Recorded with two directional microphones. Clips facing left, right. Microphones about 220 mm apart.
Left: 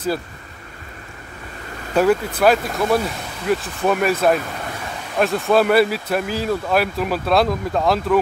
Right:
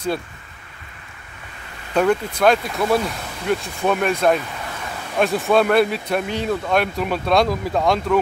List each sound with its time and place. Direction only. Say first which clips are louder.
2.0 s speech: left 2 dB; 5° left (ahead or behind)